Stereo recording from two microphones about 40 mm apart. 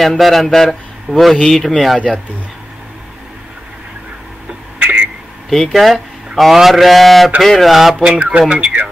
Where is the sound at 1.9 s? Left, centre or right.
Left.